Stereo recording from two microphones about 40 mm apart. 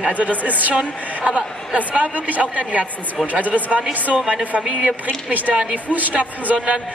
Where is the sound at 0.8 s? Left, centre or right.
Right.